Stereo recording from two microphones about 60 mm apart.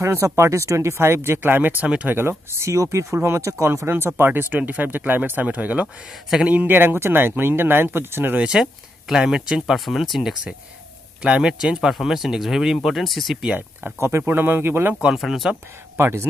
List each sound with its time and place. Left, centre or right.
0.0 s speech: right
1.4 s speech: right
6.7 s speech: right
8.4 s speech: centre
11.2 s speech: centre
13.9 s speech: right
15.1 s speech: centre
16.0 s speech: right